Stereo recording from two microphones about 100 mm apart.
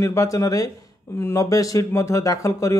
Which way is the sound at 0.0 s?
30° left (ahead or behind).